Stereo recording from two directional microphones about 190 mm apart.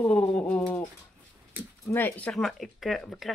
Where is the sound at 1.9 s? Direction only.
10° left (ahead or behind).